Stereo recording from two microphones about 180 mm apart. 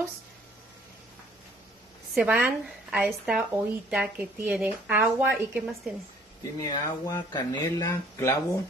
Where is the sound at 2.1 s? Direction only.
5° right (ahead or behind).